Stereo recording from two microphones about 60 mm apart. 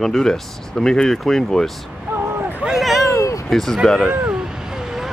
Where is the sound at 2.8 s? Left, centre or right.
Centre.